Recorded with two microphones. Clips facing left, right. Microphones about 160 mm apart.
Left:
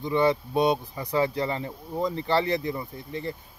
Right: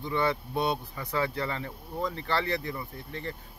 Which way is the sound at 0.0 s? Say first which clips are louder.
Left 6 dB; 15° left (ahead or behind).